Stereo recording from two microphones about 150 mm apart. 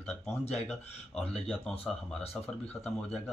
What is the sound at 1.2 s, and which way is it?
Speech, 5° left (ahead or behind).